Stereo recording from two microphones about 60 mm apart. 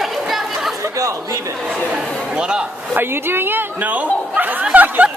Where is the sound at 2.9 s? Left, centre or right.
Right.